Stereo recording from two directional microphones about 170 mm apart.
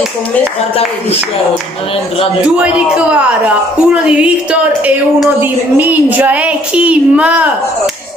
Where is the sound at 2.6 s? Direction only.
5° right (ahead or behind).